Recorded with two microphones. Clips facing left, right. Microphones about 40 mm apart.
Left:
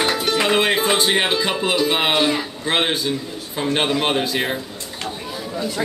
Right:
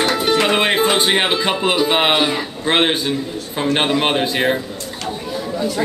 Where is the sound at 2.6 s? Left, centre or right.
Right.